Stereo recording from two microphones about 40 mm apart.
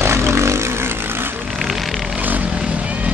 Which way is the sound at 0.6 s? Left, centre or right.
Right.